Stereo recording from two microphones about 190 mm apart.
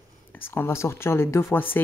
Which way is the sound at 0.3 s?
10° left (ahead or behind).